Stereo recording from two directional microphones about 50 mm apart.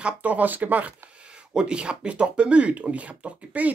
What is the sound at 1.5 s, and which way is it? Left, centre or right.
Speech, centre.